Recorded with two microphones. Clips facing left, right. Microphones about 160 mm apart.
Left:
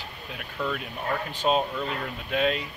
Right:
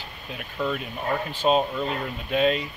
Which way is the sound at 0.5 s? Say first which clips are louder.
Right 3 dB; 20° right (ahead or behind).